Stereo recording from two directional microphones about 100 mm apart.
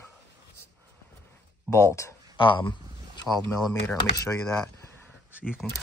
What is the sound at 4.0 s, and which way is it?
Speech, 35° left (ahead or behind).